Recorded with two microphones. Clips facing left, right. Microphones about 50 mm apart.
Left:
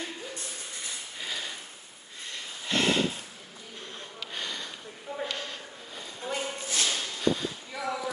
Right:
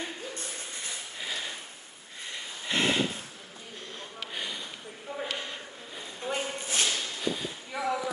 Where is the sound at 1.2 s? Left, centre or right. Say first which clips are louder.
Even; centre.